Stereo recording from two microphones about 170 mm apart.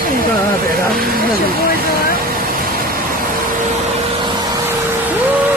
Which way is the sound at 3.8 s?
35° right (ahead or behind).